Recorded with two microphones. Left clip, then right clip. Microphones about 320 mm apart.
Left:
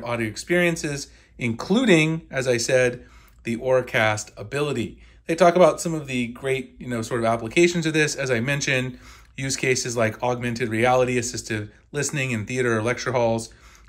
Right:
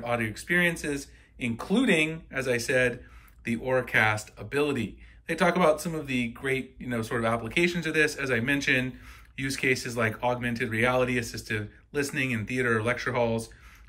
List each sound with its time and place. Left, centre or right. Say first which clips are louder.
0.0 s speech: left 2 dB; centre